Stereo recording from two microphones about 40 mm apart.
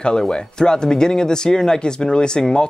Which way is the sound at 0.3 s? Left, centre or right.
Centre.